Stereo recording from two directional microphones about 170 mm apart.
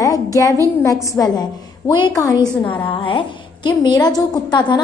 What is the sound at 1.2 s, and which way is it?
A woman's voice, 15° left (ahead or behind).